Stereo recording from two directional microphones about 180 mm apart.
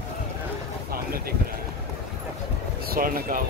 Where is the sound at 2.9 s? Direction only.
55° right (ahead or behind).